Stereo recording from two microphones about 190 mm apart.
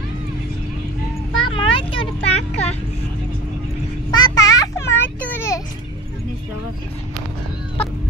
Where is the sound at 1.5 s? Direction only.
25° left (ahead or behind).